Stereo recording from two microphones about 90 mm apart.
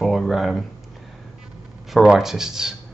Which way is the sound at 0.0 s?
Centre (ahead or behind).